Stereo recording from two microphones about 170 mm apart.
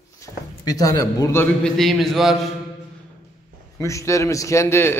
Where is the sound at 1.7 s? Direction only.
Centre (ahead or behind).